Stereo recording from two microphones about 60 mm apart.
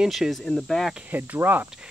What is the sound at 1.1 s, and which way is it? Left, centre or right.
Speech, right.